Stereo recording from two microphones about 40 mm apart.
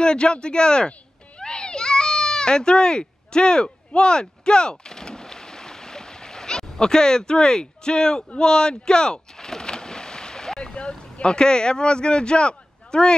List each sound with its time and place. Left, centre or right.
0.0 s speech: left
1.4 s baby cry: left
8.4 s a sound: left
10.6 s speech: left